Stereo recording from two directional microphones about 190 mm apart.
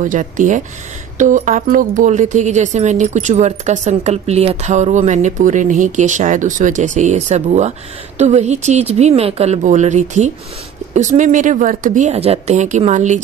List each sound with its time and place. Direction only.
0.0 s a woman's voice: 45° right (ahead or behind)